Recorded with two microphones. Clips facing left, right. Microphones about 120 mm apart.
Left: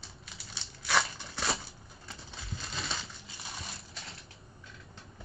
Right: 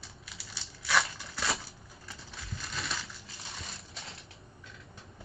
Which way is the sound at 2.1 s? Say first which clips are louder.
Left 1 dB; 25° left (ahead or behind).